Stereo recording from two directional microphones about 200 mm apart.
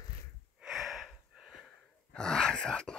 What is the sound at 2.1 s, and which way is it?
Groan, 5° left (ahead or behind).